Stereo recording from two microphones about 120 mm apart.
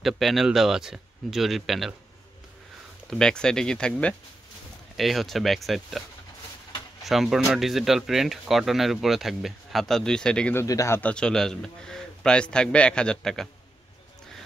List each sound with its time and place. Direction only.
0.0 s speech: centre (ahead or behind)
3.1 s speech: 5° left (ahead or behind)
7.1 s speech: centre (ahead or behind)
10.5 s speech: 25° left (ahead or behind)
11.0 s a man's voice: 10° left (ahead or behind)